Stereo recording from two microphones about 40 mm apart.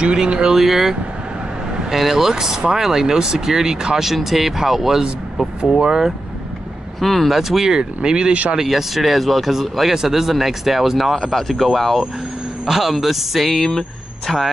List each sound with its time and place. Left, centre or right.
0.0 s speech: right
0.6 s speech: centre
7.0 s speech: centre
7.2 s speech: centre
8.5 s speech: centre
12.6 s speech: centre